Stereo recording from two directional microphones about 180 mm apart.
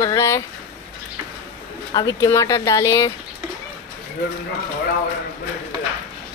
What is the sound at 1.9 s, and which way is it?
Speech, 20° left (ahead or behind).